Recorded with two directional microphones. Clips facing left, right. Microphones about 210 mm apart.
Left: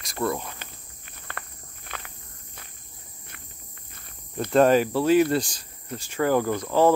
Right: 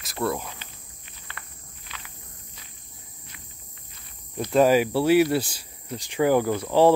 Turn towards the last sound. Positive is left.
turn(degrees=-10)  # may be behind; listen again after turning